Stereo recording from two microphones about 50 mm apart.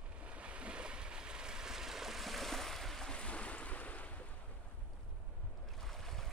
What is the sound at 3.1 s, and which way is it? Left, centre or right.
Waves, left.